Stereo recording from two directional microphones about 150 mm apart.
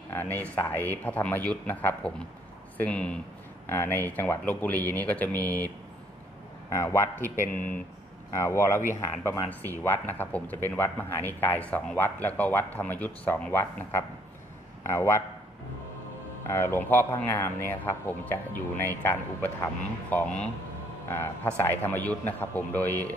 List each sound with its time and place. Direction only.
0.1 s speech: 10° left (ahead or behind)
6.7 s speech: 15° left (ahead or behind)
7.3 s speech: 60° left (ahead or behind)
8.3 s speech: 20° left (ahead or behind)
16.4 s speech: 15° left (ahead or behind)